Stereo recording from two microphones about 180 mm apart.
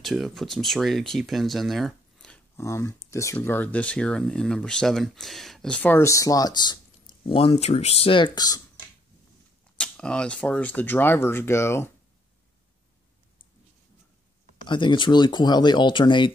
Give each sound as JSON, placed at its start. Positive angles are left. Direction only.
{"t": 0.0, "sound": "speech", "side_deg": 0}
{"t": 9.8, "sound": "speech", "side_deg": 5}
{"t": 14.7, "sound": "speech", "side_deg": 25}